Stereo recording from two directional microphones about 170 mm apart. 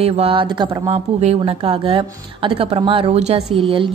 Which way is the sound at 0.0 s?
35° right (ahead or behind).